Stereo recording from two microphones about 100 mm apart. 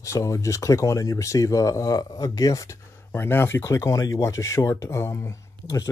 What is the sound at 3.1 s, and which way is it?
Speech, 25° left (ahead or behind).